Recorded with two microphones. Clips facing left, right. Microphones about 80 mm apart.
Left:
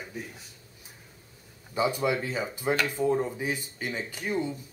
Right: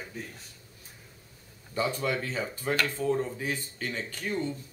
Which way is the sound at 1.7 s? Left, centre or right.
Centre.